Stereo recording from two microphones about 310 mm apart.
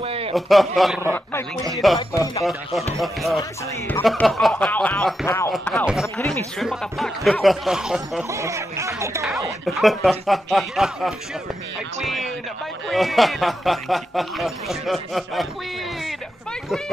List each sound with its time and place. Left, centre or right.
0.0 s a sound: centre
0.3 s speech: centre
2.0 s speech: centre
3.0 s speech: centre